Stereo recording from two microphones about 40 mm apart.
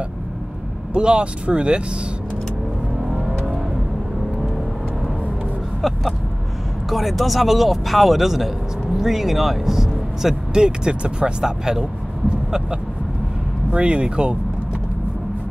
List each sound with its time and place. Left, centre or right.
0.9 s speech: right
5.8 s vehicle: centre
6.9 s speech: centre
10.5 s speech: centre
11.4 s speech: centre
13.7 s speech: right